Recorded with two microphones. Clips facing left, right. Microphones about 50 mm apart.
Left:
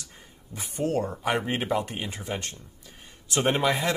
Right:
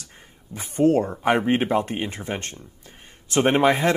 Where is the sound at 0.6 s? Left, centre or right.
Right.